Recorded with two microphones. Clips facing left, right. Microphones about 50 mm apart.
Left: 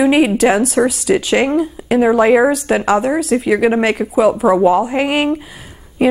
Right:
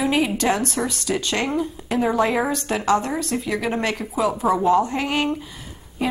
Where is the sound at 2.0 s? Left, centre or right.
Left.